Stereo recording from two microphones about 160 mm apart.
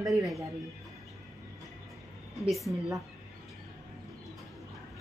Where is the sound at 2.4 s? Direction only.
Centre (ahead or behind).